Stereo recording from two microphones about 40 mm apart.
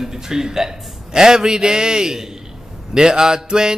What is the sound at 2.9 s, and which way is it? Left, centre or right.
Music, centre.